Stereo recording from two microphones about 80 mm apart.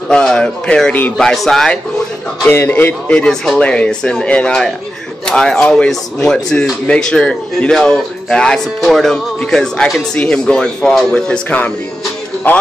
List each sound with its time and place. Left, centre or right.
0.1 s speech: centre
2.4 s speech: left